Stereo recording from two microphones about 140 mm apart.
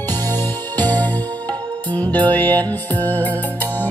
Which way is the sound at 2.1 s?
10° left (ahead or behind).